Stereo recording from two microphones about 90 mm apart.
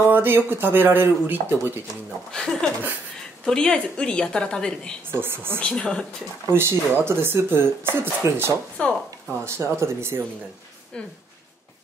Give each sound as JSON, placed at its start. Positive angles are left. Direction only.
{"t": 0.1, "sound": "speech", "side_deg": -20}
{"t": 2.3, "sound": "speech", "side_deg": 5}
{"t": 5.1, "sound": "speech", "side_deg": -25}
{"t": 5.6, "sound": "speech", "side_deg": 10}
{"t": 6.5, "sound": "speech", "side_deg": -30}
{"t": 8.8, "sound": "speech", "side_deg": 15}
{"t": 9.4, "sound": "speech", "side_deg": -30}